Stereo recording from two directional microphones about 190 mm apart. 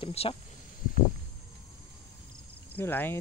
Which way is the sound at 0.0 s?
30° left (ahead or behind).